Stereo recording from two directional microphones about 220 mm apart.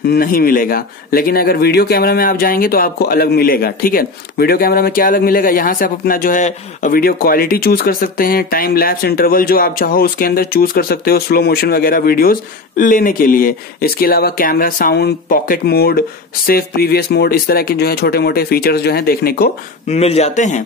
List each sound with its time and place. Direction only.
0.1 s speech: 40° left (ahead or behind)
19.9 s a man's voice: 30° left (ahead or behind)